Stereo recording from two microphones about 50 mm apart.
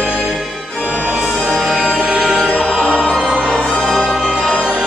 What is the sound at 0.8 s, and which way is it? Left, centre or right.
Music, right.